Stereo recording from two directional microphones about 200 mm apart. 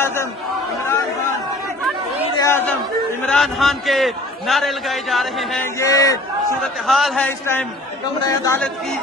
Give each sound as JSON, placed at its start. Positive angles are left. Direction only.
{"t": 0.0, "sound": "chatter", "side_deg": 10}
{"t": 2.4, "sound": "chatter", "side_deg": 10}
{"t": 3.3, "sound": "a man's voice", "side_deg": 0}
{"t": 5.8, "sound": "speech", "side_deg": 15}
{"t": 6.6, "sound": "a man's voice", "side_deg": 0}